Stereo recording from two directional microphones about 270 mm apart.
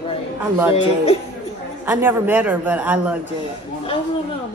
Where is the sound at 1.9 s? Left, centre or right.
Centre.